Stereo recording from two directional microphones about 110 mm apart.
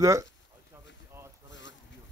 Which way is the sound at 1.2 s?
25° right (ahead or behind).